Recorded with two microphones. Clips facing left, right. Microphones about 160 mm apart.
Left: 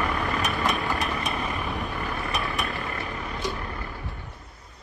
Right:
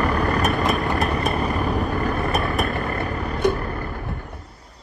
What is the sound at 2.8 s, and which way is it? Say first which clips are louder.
Vehicle: right 7 dB; 55° right (ahead or behind).